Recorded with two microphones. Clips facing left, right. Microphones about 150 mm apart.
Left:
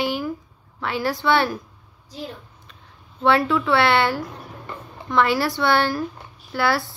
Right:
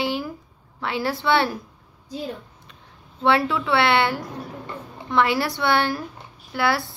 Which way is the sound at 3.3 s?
25° right (ahead or behind).